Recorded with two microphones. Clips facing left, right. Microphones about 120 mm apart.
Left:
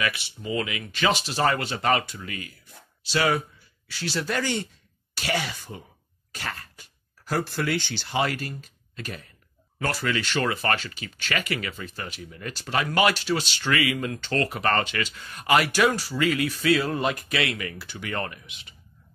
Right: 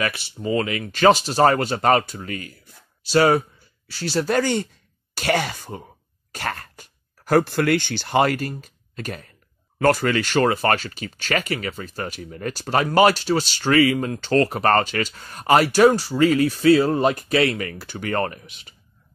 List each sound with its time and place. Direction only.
0.0 s speech: 40° right (ahead or behind)